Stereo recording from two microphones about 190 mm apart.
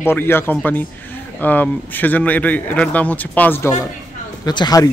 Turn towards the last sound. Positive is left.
turn(degrees=20)  # may be behind; listen again after turning